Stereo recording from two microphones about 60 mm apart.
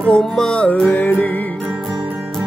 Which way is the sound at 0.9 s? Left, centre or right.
Left.